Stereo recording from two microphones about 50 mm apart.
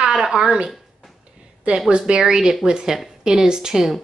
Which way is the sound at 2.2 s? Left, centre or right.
Centre.